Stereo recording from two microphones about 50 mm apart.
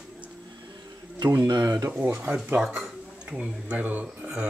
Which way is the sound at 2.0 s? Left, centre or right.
Right.